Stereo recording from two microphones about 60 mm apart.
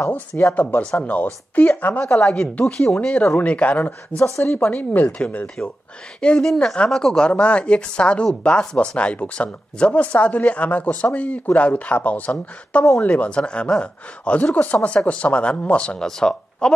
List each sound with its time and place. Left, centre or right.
0.6 s speech: left
4.2 s speech: left
4.6 s speech: left
6.4 s speech: centre